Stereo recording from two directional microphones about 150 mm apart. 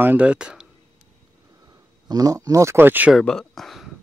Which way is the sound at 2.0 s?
25° right (ahead or behind).